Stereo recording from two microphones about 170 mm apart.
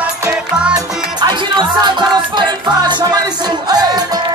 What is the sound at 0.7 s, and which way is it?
Music, 25° right (ahead or behind).